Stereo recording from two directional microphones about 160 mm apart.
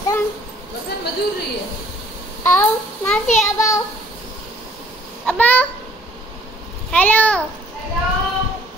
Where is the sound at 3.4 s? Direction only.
20° left (ahead or behind).